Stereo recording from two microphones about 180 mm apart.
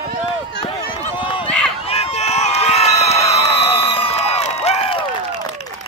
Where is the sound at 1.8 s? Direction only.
35° left (ahead or behind).